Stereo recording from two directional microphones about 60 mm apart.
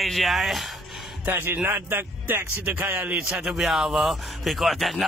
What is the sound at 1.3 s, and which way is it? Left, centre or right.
A man's voice, right.